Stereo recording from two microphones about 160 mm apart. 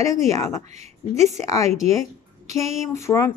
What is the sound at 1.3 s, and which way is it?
Speech, 20° left (ahead or behind).